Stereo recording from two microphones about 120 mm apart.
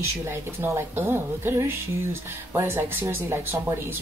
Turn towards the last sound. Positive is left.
turn(degrees=-20)  # may be behind; listen again after turning